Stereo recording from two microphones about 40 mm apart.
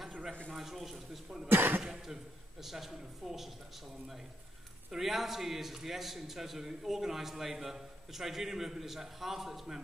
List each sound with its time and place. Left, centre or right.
0.6 s a man's voice: centre
1.5 s speech: right
1.8 s a man's voice: centre
4.9 s a man's voice: centre